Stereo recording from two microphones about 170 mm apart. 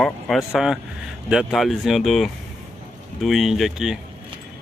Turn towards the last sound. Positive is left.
turn(degrees=0)  # may be behind; listen again after turning